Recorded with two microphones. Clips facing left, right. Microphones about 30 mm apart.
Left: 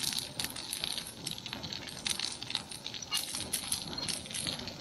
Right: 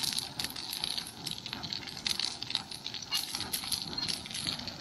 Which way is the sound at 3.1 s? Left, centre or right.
Centre.